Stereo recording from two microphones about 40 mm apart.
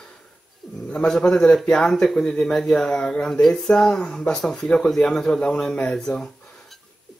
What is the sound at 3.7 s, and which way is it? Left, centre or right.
Speech, left.